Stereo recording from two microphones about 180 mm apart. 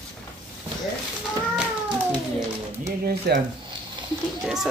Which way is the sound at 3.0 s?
65° right (ahead or behind).